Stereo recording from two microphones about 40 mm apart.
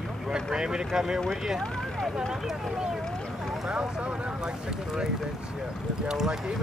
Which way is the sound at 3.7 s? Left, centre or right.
Right.